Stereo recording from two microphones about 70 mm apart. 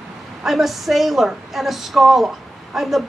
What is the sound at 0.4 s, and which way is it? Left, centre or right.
A woman's voice, centre.